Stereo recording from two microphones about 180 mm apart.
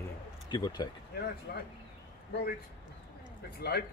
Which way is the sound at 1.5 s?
60° left (ahead or behind).